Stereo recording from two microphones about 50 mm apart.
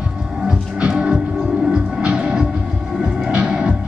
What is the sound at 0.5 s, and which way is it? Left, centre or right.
Music, centre.